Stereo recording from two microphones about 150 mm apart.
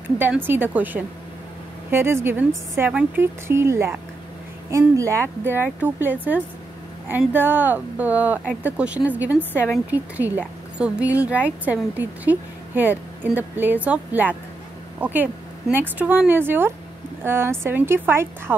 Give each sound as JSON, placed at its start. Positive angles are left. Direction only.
{"t": 0.2, "sound": "speech", "side_deg": -15}